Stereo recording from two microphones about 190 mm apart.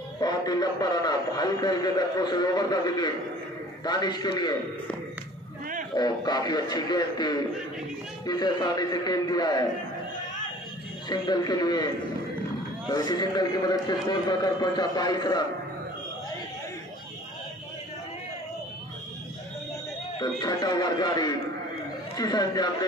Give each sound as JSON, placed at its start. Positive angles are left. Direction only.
{"t": 0.2, "sound": "a man's voice", "side_deg": 20}
{"t": 5.9, "sound": "a man's voice", "side_deg": 20}
{"t": 11.1, "sound": "a man's voice", "side_deg": 20}
{"t": 20.2, "sound": "a man's voice", "side_deg": 20}